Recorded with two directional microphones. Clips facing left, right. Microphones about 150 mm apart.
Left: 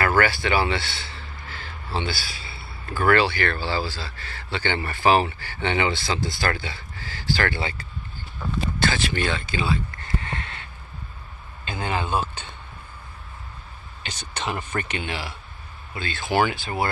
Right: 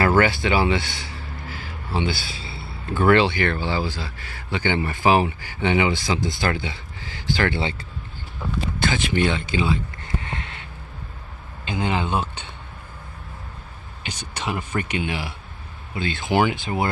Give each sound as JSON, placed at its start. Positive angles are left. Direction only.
{"t": 0.0, "sound": "speech", "side_deg": -25}
{"t": 8.7, "sound": "a sound", "side_deg": -15}
{"t": 11.6, "sound": "speech", "side_deg": -20}
{"t": 14.0, "sound": "speech", "side_deg": -10}